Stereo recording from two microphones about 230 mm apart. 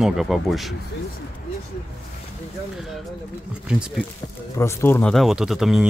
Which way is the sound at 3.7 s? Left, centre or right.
Centre.